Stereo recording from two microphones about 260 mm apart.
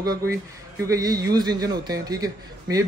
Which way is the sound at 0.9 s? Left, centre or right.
Centre.